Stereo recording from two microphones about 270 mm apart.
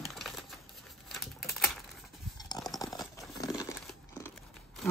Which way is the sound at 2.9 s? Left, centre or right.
Centre.